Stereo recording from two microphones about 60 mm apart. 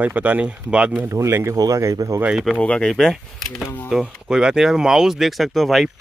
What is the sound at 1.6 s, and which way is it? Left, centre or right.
Speech, right.